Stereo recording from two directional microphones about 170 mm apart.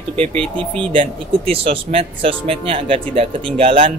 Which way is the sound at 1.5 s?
35° right (ahead or behind).